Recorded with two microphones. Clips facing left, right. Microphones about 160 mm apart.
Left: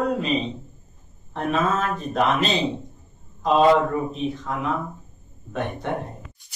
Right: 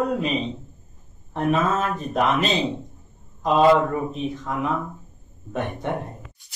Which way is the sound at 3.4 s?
5° right (ahead or behind).